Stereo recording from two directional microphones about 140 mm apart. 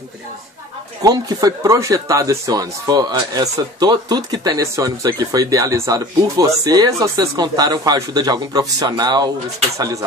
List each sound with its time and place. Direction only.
1.0 s speech: 25° right (ahead or behind)